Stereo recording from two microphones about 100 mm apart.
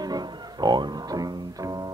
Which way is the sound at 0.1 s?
45° right (ahead or behind).